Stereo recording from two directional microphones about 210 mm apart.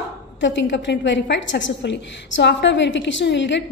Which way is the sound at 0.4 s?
60° left (ahead or behind).